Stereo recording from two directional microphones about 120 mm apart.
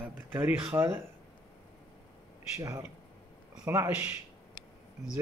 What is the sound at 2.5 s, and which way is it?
Speech, 25° right (ahead or behind).